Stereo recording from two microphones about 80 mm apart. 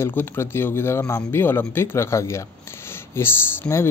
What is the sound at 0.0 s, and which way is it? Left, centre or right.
Speech, left.